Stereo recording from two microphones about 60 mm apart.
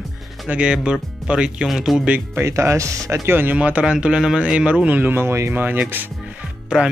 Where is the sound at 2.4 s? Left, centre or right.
Right.